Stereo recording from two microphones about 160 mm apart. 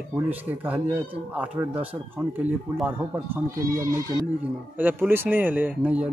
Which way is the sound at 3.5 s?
20° right (ahead or behind).